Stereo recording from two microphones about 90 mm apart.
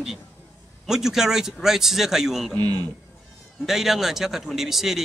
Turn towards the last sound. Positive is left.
turn(degrees=-5)  # may be behind; listen again after turning